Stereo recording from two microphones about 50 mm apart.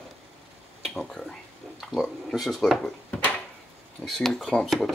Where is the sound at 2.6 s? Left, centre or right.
Left.